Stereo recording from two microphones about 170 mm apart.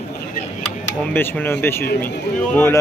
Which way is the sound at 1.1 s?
10° left (ahead or behind).